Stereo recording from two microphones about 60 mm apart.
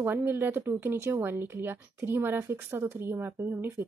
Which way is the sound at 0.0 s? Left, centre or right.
Right.